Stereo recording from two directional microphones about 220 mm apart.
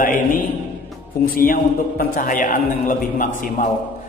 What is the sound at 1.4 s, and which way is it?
A man's voice, 40° left (ahead or behind).